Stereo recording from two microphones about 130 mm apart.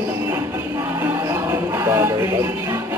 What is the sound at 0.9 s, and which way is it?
Music, 20° right (ahead or behind).